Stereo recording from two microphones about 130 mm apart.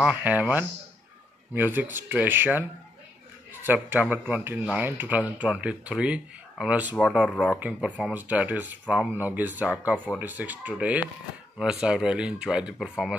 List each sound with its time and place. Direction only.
0.0 s speech: 10° right (ahead or behind)
3.6 s speech: 15° right (ahead or behind)